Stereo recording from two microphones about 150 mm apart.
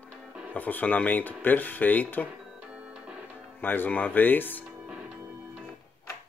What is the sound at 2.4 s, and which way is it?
Music, 5° right (ahead or behind).